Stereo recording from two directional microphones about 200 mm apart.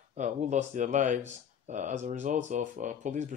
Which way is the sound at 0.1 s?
35° right (ahead or behind).